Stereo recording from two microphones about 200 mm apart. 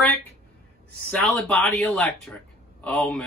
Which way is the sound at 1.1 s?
5° left (ahead or behind).